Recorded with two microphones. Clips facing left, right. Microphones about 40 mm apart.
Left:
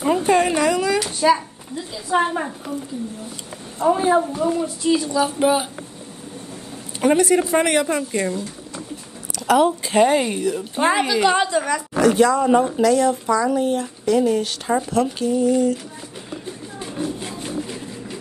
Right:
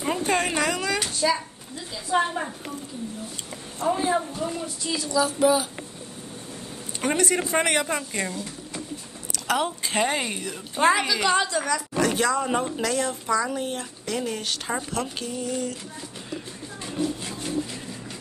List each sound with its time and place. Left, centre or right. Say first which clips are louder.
0.0 s speech: left 7 dB; centre
1.2 s a woman's voice: left 9 dB; centre
3.8 s a woman's voice: left 7 dB; centre
7.0 s speech: left 8 dB; centre
9.3 s a woman's voice: left 9 dB; centre
12.0 s speech: left 9 dB; centre
16.8 s music: left 1 dB; centre